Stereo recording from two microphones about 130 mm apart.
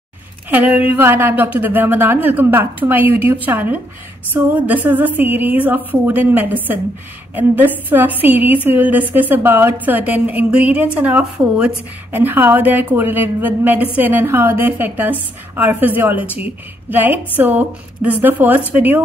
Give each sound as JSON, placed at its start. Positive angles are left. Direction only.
{"t": 0.5, "sound": "a woman's voice", "side_deg": -10}